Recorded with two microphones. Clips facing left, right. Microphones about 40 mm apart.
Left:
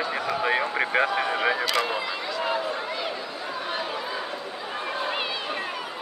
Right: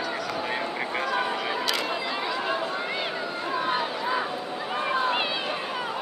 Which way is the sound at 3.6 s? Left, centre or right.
Centre.